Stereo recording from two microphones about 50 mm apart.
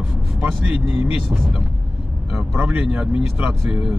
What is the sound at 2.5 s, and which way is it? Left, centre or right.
Speech, right.